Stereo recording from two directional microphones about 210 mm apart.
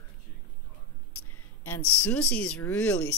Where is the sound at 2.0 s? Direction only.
5° left (ahead or behind).